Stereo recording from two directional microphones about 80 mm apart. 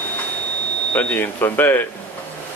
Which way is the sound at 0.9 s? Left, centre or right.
Left.